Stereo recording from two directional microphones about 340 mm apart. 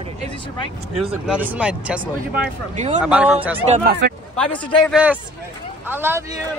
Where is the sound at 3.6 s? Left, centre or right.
Right.